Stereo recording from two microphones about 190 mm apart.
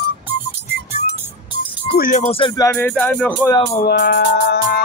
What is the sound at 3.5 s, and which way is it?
Speech, 25° left (ahead or behind).